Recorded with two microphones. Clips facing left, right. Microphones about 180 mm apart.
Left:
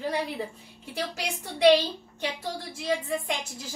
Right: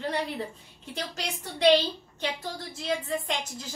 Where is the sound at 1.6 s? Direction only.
10° left (ahead or behind).